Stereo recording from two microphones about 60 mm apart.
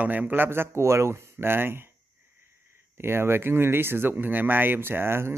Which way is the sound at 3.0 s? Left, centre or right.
Right.